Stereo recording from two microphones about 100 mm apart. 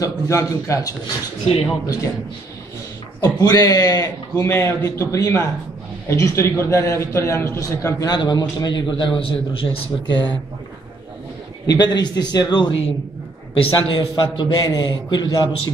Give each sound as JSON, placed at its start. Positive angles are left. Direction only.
{"t": 0.0, "sound": "a man's voice", "side_deg": 35}
{"t": 3.2, "sound": "a man's voice", "side_deg": 40}
{"t": 8.0, "sound": "a man's voice", "side_deg": 45}
{"t": 11.6, "sound": "a man's voice", "side_deg": 45}